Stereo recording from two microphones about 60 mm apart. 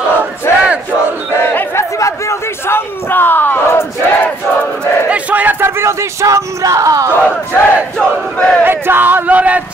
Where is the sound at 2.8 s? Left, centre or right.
Left.